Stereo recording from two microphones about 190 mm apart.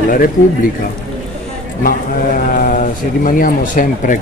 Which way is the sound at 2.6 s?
45° left (ahead or behind).